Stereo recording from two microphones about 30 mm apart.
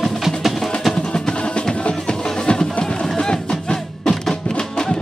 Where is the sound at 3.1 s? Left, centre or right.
Left.